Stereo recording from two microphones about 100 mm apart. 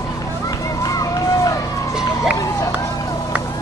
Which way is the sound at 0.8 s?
35° left (ahead or behind).